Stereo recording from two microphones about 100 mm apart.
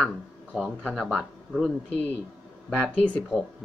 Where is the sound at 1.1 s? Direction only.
Centre (ahead or behind).